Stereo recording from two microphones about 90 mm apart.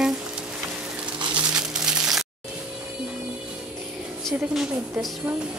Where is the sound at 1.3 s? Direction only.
10° right (ahead or behind).